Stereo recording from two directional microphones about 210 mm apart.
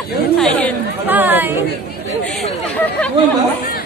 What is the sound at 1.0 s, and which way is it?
Chatter, 10° right (ahead or behind).